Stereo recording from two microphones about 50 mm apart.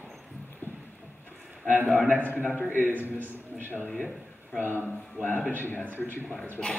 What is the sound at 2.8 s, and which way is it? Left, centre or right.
Speech, right.